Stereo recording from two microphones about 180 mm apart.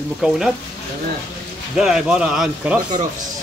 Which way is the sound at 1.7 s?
Centre (ahead or behind).